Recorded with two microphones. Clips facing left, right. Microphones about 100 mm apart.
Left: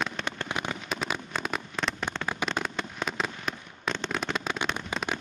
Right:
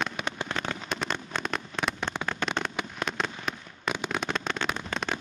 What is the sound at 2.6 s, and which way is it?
Fireworks, centre (ahead or behind).